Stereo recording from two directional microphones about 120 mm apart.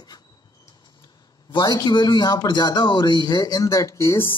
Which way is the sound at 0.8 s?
40° left (ahead or behind).